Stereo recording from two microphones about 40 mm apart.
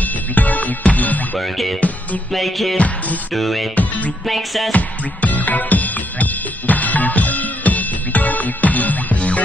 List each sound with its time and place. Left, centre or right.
0.0 s music: left
1.4 s music: centre
4.7 s music: left